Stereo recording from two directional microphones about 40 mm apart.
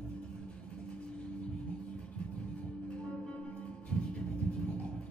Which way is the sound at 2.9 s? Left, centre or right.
Left.